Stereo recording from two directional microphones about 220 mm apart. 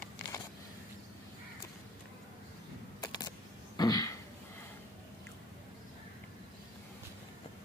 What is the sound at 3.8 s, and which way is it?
Throat clearing, 15° left (ahead or behind).